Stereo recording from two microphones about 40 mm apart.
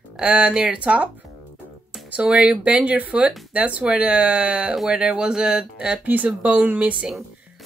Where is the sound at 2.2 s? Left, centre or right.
Right.